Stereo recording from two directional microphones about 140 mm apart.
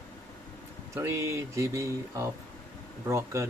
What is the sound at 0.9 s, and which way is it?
Speech, 20° right (ahead or behind).